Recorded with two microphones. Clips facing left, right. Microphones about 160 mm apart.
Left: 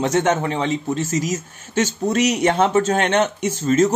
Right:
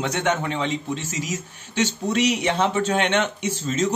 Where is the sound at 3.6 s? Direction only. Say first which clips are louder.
Left 8 dB; 50° left (ahead or behind).